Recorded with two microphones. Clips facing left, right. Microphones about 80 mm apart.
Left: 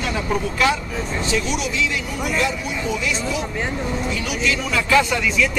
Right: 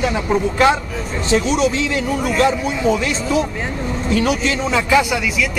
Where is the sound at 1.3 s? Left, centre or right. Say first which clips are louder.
Right 9 dB; right.